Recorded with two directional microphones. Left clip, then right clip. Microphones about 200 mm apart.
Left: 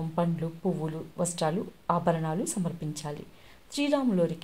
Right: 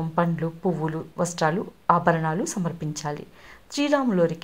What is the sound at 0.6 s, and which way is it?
A woman's voice, 20° right (ahead or behind).